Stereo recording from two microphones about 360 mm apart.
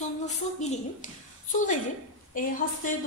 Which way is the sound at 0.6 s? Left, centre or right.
Centre.